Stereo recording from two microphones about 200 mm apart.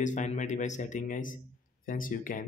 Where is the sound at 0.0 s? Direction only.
35° left (ahead or behind).